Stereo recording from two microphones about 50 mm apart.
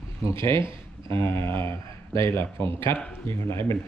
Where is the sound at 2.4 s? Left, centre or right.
Left.